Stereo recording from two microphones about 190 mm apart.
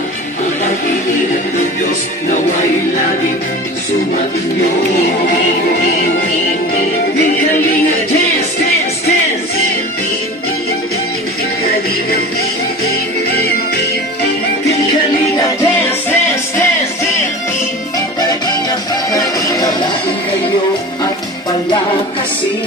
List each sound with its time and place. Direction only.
15.6 s music: 10° left (ahead or behind)
17.9 s music: 20° left (ahead or behind)
21.0 s music: 20° left (ahead or behind)